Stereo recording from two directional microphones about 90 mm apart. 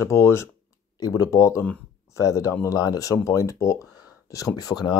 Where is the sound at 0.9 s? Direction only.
45° left (ahead or behind).